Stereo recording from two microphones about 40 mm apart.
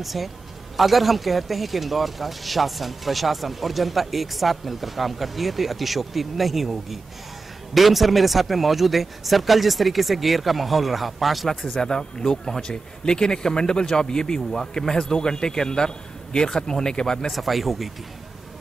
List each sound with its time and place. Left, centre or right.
0.0 s speech: centre
11.4 s speech: centre
17.3 s speech: centre